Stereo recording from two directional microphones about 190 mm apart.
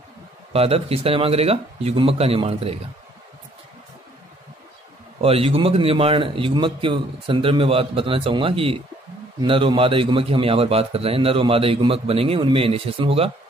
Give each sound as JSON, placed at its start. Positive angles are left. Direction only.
{"t": 0.5, "sound": "speech", "side_deg": -30}
{"t": 5.2, "sound": "a man's voice", "side_deg": -30}